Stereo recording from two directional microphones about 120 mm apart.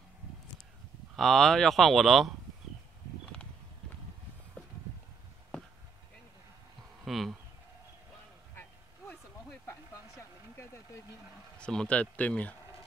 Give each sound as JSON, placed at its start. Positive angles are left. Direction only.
{"t": 1.1, "sound": "speech", "side_deg": 5}
{"t": 7.1, "sound": "speech", "side_deg": 0}
{"t": 9.7, "sound": "a sound", "side_deg": 20}
{"t": 11.5, "sound": "speech", "side_deg": 5}